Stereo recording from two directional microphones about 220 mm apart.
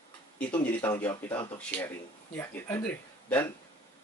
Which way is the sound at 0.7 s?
10° left (ahead or behind).